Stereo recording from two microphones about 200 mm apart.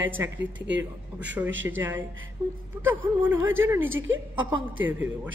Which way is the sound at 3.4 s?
75° right (ahead or behind).